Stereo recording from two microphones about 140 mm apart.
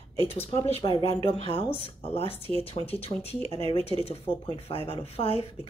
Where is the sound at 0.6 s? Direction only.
45° left (ahead or behind).